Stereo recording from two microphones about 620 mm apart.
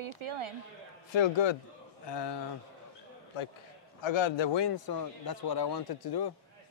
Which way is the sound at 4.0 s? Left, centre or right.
Left.